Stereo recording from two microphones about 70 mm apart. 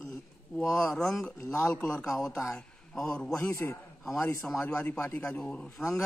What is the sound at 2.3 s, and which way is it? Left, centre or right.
Speech, left.